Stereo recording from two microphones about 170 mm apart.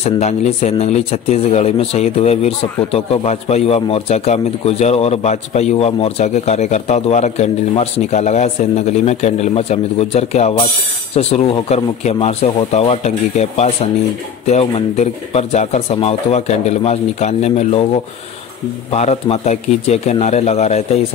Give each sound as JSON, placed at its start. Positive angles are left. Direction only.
{"t": 0.0, "sound": "speech", "side_deg": 40}
{"t": 18.9, "sound": "speech", "side_deg": 40}